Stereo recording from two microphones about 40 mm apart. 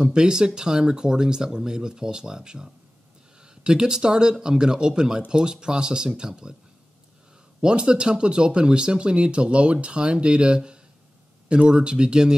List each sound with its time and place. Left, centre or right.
0.0 s speech: centre
7.6 s speech: right